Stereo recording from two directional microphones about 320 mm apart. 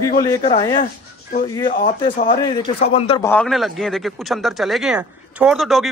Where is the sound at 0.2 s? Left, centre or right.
Centre.